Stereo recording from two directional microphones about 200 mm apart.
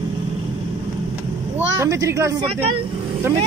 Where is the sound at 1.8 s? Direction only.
15° right (ahead or behind).